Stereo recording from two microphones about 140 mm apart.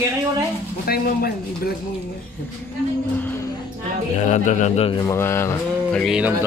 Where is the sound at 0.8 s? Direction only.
90° left.